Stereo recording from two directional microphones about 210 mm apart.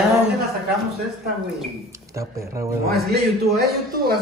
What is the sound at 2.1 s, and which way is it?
Speech, 15° right (ahead or behind).